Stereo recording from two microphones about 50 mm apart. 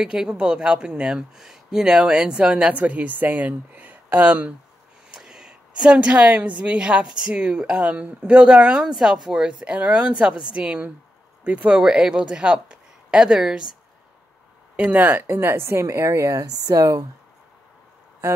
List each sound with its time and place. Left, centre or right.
0.0 s speech: centre; by 4.5 s right
5.1 s a sound: centre
5.9 s a woman's voice: right
7.1 s a woman's voice: centre
8.9 s a woman's voice: centre; by 11.8 s right
11.8 s speech: centre
14.8 s a woman's voice: right